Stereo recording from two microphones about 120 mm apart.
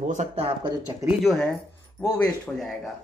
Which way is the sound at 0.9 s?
35° right (ahead or behind).